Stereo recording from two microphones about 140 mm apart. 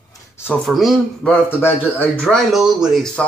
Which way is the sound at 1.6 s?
15° left (ahead or behind).